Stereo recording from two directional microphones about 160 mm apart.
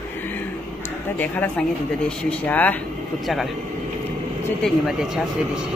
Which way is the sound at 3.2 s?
Centre (ahead or behind).